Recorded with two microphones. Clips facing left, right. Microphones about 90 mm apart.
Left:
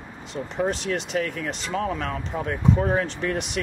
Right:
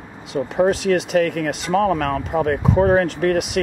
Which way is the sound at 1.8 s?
90° right.